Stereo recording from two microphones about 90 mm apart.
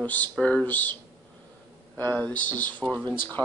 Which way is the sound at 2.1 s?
15° left (ahead or behind).